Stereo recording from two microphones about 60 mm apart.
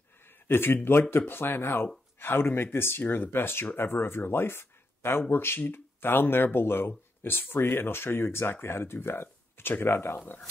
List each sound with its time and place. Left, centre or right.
0.5 s speech: left